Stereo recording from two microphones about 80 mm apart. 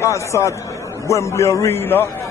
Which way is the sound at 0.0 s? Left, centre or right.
Left.